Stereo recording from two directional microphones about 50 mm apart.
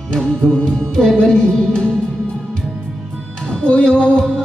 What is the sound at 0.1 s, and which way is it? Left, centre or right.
Music, centre.